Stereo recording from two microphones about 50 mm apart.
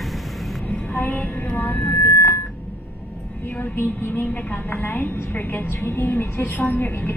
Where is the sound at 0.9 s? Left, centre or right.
Left.